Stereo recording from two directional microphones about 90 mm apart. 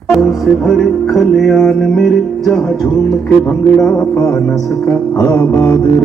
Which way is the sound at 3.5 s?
20° left (ahead or behind).